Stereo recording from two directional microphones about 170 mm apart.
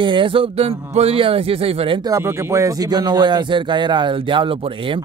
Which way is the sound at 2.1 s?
15° right (ahead or behind).